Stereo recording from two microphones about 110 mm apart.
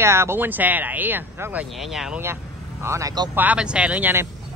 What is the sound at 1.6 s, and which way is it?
Speech, centre (ahead or behind).